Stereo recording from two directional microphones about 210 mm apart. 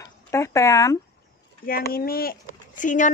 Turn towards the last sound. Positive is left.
turn(degrees=35)  # may be behind; listen again after turning